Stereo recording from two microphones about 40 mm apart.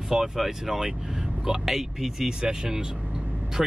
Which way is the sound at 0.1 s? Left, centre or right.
Centre.